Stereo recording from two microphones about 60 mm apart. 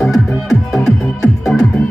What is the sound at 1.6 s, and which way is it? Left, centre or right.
Music, centre.